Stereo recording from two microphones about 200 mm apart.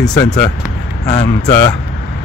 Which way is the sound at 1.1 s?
20° left (ahead or behind).